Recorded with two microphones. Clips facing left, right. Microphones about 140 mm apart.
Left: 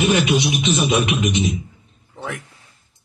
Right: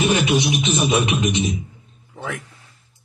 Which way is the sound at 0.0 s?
25° right (ahead or behind).